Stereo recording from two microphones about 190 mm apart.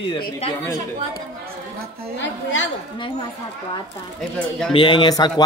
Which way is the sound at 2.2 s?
80° left.